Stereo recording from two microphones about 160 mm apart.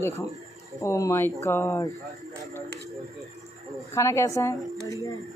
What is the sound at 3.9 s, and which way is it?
Speech, 20° left (ahead or behind).